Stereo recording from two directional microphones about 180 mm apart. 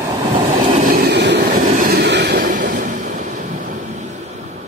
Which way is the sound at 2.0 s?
70° right (ahead or behind).